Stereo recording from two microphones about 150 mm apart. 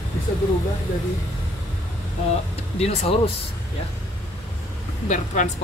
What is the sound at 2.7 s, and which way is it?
Speech, 45° left (ahead or behind).